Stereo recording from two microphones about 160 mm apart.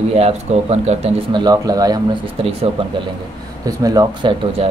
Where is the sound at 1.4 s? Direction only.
25° right (ahead or behind).